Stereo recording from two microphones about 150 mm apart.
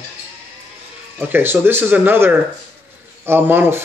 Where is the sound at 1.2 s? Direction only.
15° right (ahead or behind).